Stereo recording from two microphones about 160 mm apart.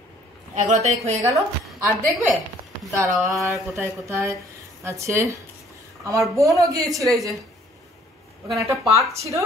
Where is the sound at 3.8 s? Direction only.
15° right (ahead or behind).